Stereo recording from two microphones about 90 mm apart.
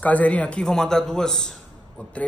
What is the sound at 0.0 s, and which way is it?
Speech, 15° left (ahead or behind).